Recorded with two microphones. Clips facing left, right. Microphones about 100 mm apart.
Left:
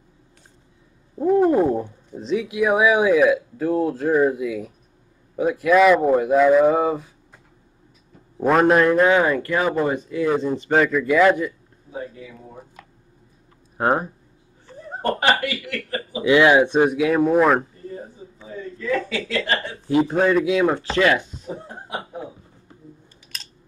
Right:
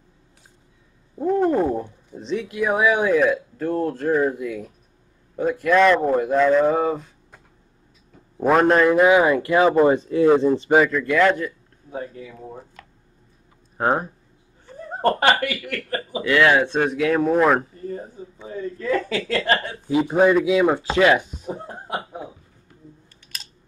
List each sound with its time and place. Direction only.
1.1 s a sound: 5° left (ahead or behind)
2.1 s speech: 5° left (ahead or behind)
8.4 s a man's voice: centre (ahead or behind); by 10.5 s 25° right (ahead or behind)
10.9 s speech: 5° left (ahead or behind)
13.7 s speech: centre (ahead or behind)
15.0 s speech: 45° right (ahead or behind)
16.2 s a man's voice: 15° left (ahead or behind); by 17.6 s centre (ahead or behind)
19.0 s speech: 45° right (ahead or behind)
20.1 s a man's voice: 10° right (ahead or behind)
23.2 s typing: centre (ahead or behind)